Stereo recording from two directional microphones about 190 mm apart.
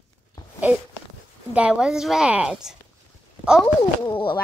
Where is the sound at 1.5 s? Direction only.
5° right (ahead or behind).